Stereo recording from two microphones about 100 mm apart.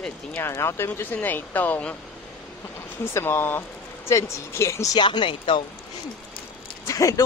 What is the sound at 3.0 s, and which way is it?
Speech, 25° left (ahead or behind).